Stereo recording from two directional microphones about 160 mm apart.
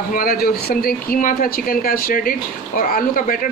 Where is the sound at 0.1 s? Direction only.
65° left (ahead or behind).